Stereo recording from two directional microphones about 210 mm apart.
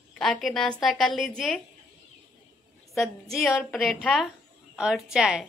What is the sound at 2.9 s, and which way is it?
A woman's voice, centre (ahead or behind).